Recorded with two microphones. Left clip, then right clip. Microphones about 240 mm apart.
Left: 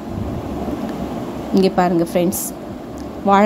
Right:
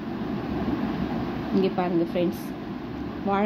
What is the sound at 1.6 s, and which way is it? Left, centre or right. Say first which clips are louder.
Speech: left 9 dB; left.